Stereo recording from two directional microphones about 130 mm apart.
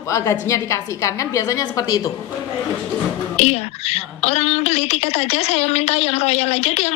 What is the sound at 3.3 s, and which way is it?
A woman's voice, 55° left (ahead or behind).